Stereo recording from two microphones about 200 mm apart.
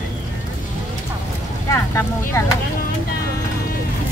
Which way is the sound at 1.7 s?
15° left (ahead or behind).